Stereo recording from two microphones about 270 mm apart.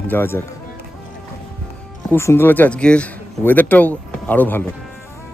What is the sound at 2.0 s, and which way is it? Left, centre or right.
A man's voice, centre.